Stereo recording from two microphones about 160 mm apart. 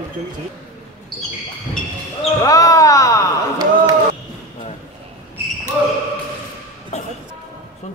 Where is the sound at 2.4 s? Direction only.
20° left (ahead or behind).